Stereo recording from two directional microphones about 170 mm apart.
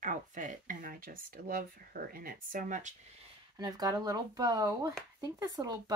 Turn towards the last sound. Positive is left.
turn(degrees=-20)  # may be behind; listen again after turning